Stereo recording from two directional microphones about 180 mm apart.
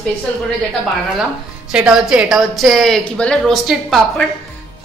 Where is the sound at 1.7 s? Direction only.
5° right (ahead or behind).